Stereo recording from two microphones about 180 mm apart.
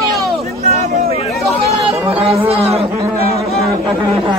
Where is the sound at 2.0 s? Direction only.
35° right (ahead or behind).